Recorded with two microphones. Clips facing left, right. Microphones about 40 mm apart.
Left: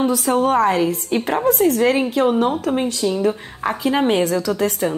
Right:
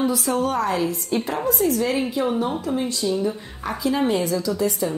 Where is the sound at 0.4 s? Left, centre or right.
Left.